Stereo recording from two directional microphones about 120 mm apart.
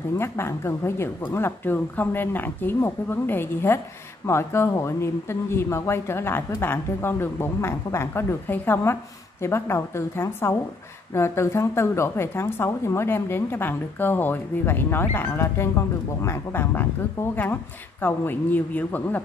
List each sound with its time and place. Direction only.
0.2 s speech: 20° left (ahead or behind)